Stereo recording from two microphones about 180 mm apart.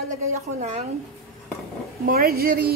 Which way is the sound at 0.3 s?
40° right (ahead or behind).